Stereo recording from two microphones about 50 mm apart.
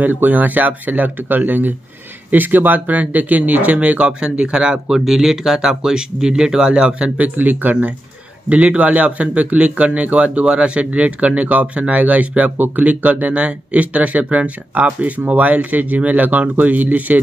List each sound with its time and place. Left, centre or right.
0.0 s speech: right
7.2 s speech: right